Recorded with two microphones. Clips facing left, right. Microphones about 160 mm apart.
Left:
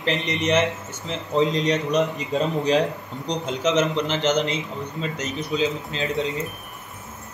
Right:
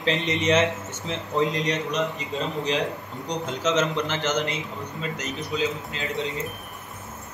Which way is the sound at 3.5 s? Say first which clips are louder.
Left 3 dB; 15° left (ahead or behind).